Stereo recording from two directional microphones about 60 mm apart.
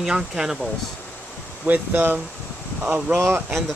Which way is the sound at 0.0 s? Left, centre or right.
Centre.